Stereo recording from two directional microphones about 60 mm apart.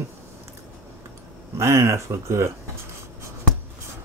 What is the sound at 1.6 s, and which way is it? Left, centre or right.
Speech, right.